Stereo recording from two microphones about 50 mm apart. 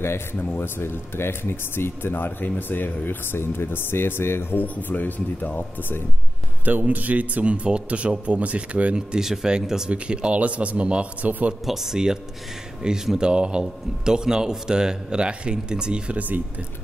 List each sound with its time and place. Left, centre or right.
0.0 s speech: left
6.6 s a man's voice: right
8.9 s a man's voice: centre
9.8 s a man's voice: right
11.6 s a man's voice: centre; by 16.3 s right